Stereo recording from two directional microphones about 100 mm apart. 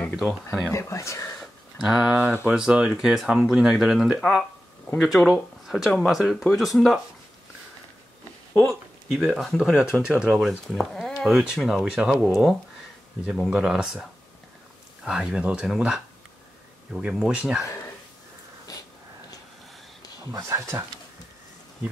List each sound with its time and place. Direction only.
0.3 s speech: centre (ahead or behind)
0.7 s speech: 30° left (ahead or behind)
1.4 s a sound: 5° right (ahead or behind)
2.4 s speech: 5° right (ahead or behind)
9.1 s speech: centre (ahead or behind)
15.0 s speech: 10° right (ahead or behind)
18.7 s a sound: 35° left (ahead or behind)
20.4 s speech: 30° right (ahead or behind)